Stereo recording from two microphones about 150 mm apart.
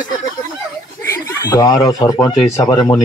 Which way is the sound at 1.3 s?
25° left (ahead or behind).